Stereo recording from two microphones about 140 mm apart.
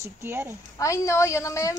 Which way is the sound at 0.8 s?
20° left (ahead or behind).